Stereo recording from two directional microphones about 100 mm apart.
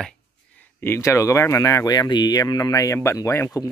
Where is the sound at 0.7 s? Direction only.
25° left (ahead or behind).